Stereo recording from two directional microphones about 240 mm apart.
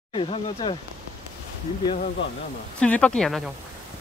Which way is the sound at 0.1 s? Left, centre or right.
Left.